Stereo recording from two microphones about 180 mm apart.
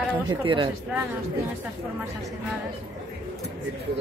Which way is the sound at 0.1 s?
25° right (ahead or behind).